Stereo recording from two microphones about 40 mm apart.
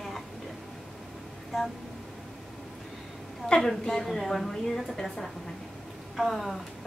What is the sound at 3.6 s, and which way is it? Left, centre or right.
A woman's voice, centre.